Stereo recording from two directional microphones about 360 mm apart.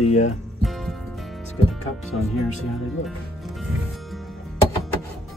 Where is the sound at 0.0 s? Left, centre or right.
Centre.